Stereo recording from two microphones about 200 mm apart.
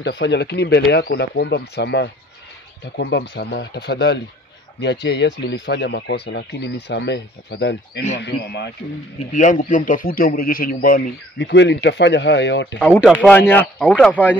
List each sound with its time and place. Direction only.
0.0 s speech: 60° left (ahead or behind)
9.3 s a man's voice: 40° left (ahead or behind)
11.3 s speech: 60° left (ahead or behind)
12.7 s speech: 10° left (ahead or behind)
13.0 s speech: centre (ahead or behind)
13.3 s speech: 10° left (ahead or behind)